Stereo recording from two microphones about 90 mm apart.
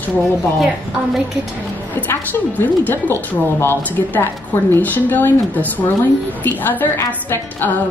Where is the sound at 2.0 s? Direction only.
20° left (ahead or behind).